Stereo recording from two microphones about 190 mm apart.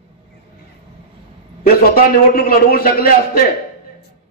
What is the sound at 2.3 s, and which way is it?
A man's voice, 55° left (ahead or behind).